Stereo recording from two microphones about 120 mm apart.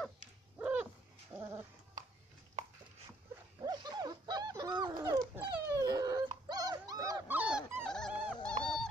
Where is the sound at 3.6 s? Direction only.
35° right (ahead or behind).